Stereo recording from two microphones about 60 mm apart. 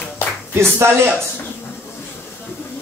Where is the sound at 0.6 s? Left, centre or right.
Right.